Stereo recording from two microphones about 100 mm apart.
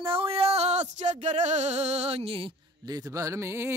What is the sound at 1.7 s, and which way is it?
Music, 90° right.